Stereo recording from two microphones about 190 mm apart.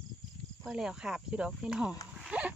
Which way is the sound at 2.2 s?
5° right (ahead or behind).